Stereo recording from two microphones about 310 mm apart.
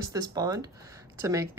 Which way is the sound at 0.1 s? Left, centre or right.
Centre.